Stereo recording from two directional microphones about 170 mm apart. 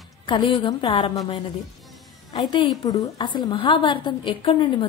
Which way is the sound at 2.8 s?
25° left (ahead or behind).